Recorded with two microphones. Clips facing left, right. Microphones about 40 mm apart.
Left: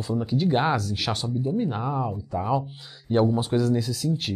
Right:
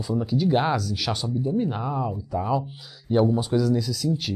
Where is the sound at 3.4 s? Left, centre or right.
Left.